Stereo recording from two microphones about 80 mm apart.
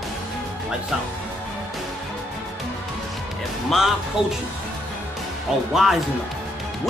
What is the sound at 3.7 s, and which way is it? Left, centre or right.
Speech, centre.